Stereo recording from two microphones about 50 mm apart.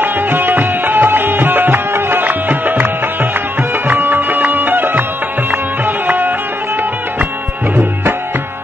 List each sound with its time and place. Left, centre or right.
0.0 s music: right